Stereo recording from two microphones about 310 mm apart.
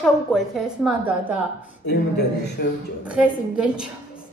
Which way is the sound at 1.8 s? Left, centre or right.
Left.